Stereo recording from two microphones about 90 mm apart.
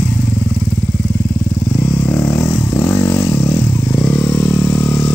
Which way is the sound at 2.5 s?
35° left (ahead or behind).